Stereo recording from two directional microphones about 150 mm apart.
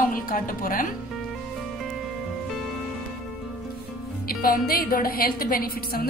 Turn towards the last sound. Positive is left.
turn(degrees=80)